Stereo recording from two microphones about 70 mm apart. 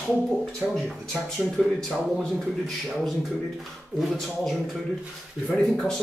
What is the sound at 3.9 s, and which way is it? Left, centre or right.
Speech, centre.